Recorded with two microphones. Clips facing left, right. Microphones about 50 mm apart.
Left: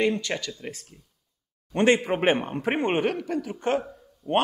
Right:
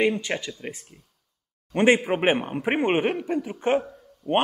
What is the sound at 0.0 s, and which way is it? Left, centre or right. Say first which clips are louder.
A man's voice: right 1 dB; right.